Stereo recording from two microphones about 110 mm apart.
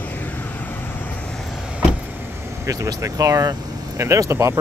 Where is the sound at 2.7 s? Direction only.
30° right (ahead or behind).